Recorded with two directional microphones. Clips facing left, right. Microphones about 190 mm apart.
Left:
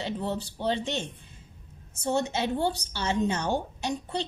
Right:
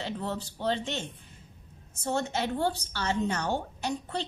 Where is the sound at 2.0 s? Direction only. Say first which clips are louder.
Left 3 dB; 15° left (ahead or behind).